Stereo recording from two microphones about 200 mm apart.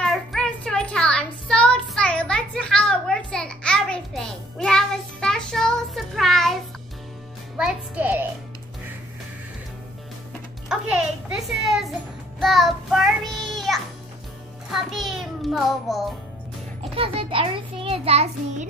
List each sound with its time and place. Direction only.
0.0 s child singing: centre (ahead or behind)
7.5 s a child's voice: 5° right (ahead or behind)
10.7 s a child's voice: 5° right (ahead or behind)
12.4 s child singing: centre (ahead or behind)
14.7 s music: centre (ahead or behind)
16.9 s a child's voice: 30° right (ahead or behind)